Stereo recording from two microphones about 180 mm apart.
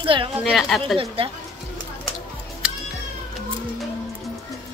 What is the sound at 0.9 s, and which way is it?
Speech, 30° right (ahead or behind).